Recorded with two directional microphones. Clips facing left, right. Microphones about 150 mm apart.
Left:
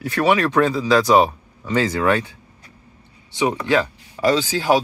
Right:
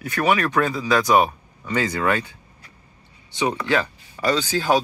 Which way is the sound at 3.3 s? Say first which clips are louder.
Left 3 dB; 20° left (ahead or behind).